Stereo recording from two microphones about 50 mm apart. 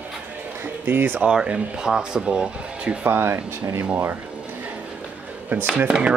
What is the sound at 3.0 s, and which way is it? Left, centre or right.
Speech, right.